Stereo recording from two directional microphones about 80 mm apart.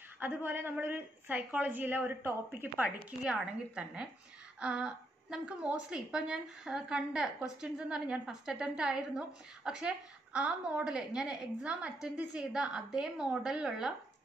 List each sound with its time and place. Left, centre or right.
0.2 s a woman's voice: right
3.3 s a woman's voice: centre